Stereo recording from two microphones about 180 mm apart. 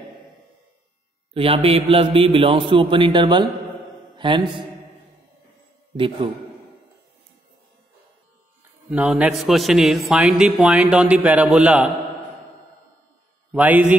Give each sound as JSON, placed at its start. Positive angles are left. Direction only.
{"t": 1.3, "sound": "a man's voice", "side_deg": -30}
{"t": 8.9, "sound": "a man's voice", "side_deg": -10}
{"t": 13.5, "sound": "a man's voice", "side_deg": -10}